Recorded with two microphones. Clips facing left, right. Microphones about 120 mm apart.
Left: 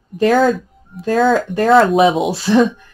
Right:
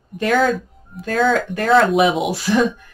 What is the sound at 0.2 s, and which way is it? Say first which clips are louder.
Speech: left 4 dB; 35° left (ahead or behind).